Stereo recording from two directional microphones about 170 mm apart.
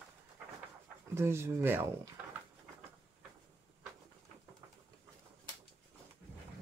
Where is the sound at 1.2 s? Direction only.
15° right (ahead or behind).